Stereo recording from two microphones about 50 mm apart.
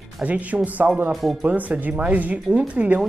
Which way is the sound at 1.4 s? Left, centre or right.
Right.